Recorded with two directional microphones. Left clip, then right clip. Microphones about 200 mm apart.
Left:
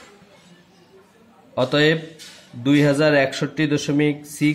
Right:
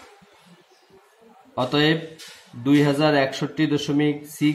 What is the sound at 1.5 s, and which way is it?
A man's voice, 20° left (ahead or behind).